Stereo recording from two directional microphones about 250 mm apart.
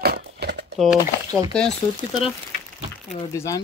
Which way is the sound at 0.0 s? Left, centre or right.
Right.